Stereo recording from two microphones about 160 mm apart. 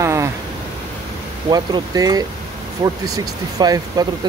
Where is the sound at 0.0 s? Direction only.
15° right (ahead or behind).